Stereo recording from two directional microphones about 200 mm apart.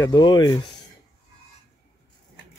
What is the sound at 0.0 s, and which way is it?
Speech, 20° left (ahead or behind).